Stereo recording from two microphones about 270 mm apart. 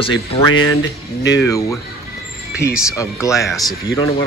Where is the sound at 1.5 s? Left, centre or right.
Centre.